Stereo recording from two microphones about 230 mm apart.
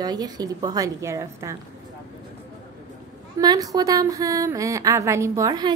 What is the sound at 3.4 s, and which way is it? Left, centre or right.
A woman's voice, centre.